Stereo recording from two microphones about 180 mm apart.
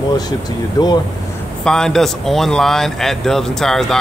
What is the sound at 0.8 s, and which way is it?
Speech, 20° left (ahead or behind).